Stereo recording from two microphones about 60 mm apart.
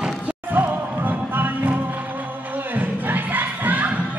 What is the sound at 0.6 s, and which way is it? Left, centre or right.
Music, right.